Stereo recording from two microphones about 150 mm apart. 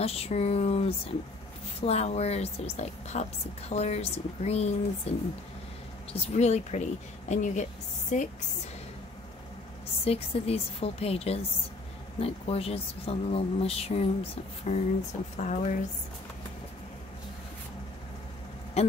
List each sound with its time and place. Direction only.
0.0 s a woman's voice: 40° left (ahead or behind)
6.3 s a woman's voice: 50° left (ahead or behind)
10.0 s a woman's voice: 40° left (ahead or behind)
18.8 s speech: 45° left (ahead or behind)